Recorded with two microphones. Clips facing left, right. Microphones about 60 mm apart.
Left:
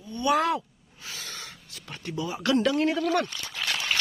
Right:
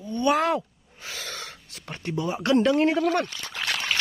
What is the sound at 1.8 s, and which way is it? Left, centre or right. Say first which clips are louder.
Speech: right 4 dB; right.